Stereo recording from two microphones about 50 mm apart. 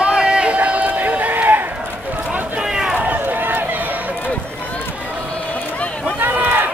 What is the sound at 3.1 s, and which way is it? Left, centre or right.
Run, right.